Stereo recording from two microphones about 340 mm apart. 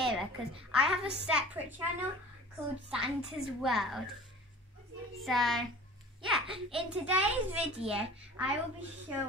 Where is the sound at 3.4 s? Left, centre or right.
Centre.